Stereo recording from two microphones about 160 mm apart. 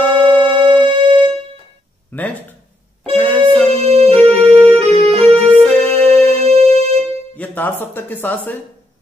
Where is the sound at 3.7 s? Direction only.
40° right (ahead or behind).